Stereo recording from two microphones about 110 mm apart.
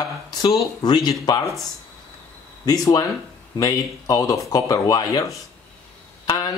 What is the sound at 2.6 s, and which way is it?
Speech, 30° left (ahead or behind).